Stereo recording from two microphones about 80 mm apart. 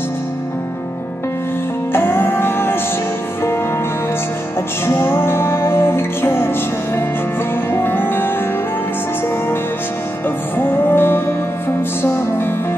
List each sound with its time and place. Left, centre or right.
1.9 s music: left
4.8 s music: left
10.6 s music: left